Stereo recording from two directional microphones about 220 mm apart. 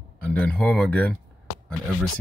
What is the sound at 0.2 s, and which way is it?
Speech, 5° left (ahead or behind).